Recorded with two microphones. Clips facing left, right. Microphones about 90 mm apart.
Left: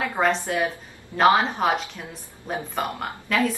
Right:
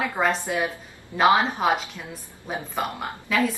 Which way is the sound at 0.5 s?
5° right (ahead or behind).